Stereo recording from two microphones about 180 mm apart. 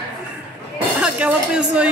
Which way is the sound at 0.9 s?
5° right (ahead or behind).